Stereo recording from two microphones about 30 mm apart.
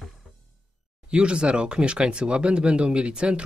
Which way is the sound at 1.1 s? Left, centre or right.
Right.